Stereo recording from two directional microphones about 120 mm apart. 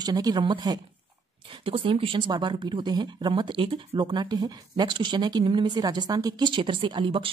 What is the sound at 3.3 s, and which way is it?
Speech, 45° right (ahead or behind).